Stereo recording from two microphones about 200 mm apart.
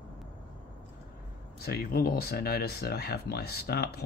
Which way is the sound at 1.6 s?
50° left (ahead or behind).